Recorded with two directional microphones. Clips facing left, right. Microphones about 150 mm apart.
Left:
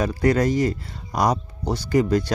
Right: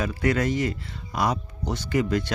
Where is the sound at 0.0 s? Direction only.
35° left (ahead or behind).